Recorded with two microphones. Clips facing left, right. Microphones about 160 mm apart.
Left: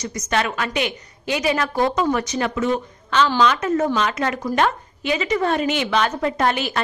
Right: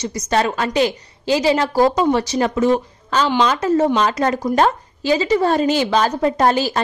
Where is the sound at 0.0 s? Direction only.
30° right (ahead or behind).